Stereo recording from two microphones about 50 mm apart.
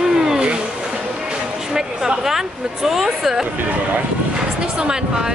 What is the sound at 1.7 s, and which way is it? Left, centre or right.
Speech, centre.